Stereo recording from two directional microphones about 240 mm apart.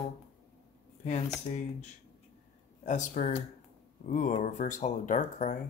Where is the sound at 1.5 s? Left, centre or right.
Left.